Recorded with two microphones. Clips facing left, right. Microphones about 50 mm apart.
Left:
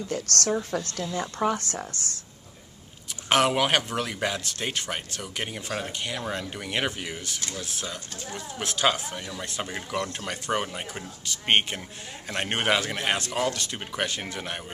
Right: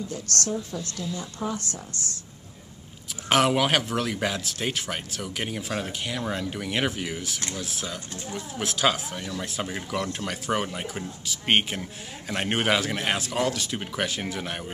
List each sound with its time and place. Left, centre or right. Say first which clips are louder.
0.1 s a woman's voice: left 5 dB; left
1.2 s speech: left 8 dB; left
3.3 s speech: right 1 dB; centre